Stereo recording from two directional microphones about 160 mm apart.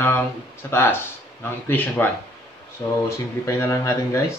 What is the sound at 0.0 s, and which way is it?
Speech, 15° left (ahead or behind).